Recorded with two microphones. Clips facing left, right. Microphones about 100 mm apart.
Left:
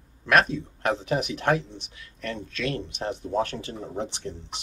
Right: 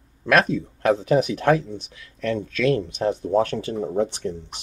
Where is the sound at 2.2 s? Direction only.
45° right (ahead or behind).